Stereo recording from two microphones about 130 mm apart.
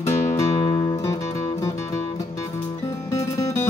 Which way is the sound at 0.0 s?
20° left (ahead or behind).